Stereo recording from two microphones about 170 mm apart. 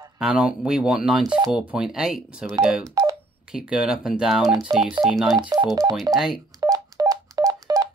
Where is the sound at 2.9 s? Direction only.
20° right (ahead or behind).